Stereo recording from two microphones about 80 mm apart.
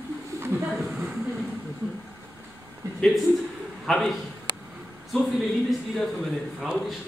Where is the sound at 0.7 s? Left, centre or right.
Centre.